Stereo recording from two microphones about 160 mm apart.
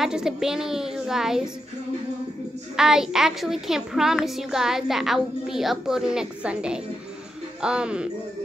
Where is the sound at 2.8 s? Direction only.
5° right (ahead or behind).